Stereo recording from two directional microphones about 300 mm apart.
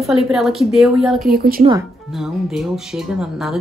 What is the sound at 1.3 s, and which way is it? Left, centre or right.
Speech, right.